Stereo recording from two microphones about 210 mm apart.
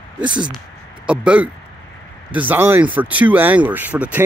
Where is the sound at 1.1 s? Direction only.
5° right (ahead or behind).